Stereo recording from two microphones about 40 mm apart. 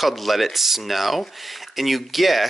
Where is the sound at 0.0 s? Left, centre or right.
Centre.